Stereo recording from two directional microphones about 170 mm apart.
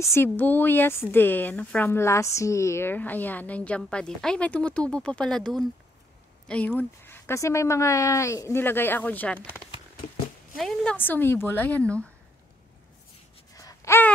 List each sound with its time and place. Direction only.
0.0 s speech: 15° left (ahead or behind)
10.5 s speech: 5° left (ahead or behind)
13.6 s a sound: 20° left (ahead or behind)